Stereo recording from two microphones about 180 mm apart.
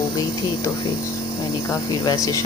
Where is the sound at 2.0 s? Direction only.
20° left (ahead or behind).